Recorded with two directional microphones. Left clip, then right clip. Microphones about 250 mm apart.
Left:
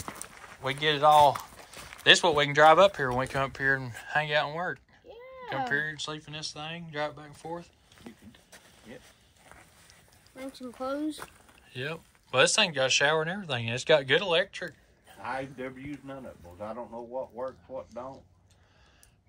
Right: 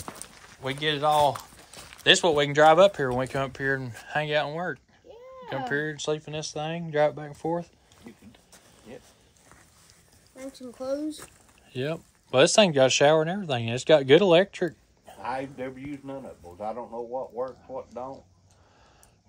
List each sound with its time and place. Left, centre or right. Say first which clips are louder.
0.0 s walk: even; centre
2.0 s speech: right 1 dB; centre; by 7.6 s right
11.7 s speech: right 5 dB; centre